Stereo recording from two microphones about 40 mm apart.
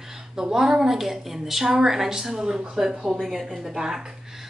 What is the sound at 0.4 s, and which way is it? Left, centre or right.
A woman's voice, centre.